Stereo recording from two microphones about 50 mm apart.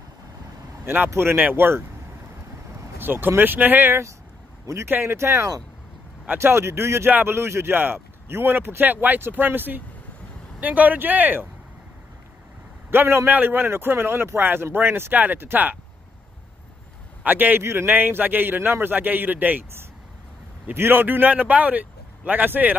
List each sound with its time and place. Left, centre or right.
0.8 s speech: right
3.0 s speech: right
5.0 s speech: right
6.2 s speech: right
7.1 s speech: right
7.3 s speech: right
7.7 s speech: right
12.9 s speech: right
13.3 s speech: right
17.2 s a man's voice: right
17.6 s speech: right
17.9 s speech: right
20.7 s speech: right